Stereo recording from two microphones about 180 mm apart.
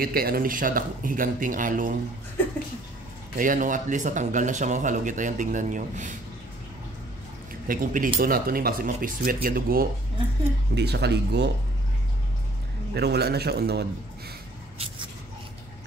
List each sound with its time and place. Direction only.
0.0 s speech: 55° right (ahead or behind)
3.3 s speech: 50° right (ahead or behind)
7.6 s speech: 50° right (ahead or behind)
10.7 s speech: 70° right (ahead or behind)
12.9 s a man's voice: 65° right (ahead or behind)